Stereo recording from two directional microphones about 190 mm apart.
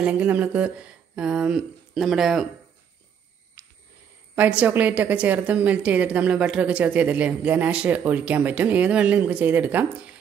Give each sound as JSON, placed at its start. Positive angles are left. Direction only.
{"t": 0.0, "sound": "speech", "side_deg": -5}
{"t": 4.4, "sound": "a woman's voice", "side_deg": -5}